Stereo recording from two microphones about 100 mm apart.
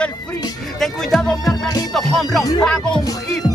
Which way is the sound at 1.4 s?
35° left (ahead or behind).